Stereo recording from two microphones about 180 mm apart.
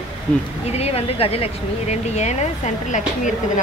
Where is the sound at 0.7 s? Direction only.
35° left (ahead or behind).